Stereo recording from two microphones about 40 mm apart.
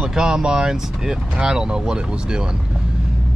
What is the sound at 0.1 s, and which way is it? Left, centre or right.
Speech, centre.